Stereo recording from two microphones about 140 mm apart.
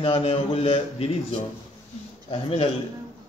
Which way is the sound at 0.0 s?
40° left (ahead or behind).